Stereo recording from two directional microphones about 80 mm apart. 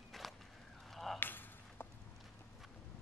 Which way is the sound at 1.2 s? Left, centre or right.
Left.